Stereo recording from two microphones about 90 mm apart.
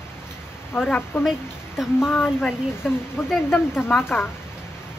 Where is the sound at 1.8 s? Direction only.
5° right (ahead or behind).